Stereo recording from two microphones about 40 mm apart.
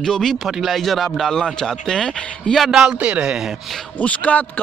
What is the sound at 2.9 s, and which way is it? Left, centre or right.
Speech, right.